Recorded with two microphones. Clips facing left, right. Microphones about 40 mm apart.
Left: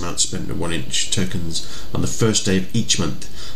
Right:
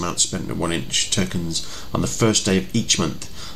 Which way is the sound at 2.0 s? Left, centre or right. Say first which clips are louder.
Even; centre.